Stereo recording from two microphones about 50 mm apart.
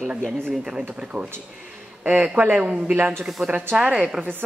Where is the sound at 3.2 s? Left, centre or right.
Right.